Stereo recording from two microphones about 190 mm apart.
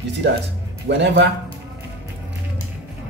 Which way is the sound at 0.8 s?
65° right (ahead or behind).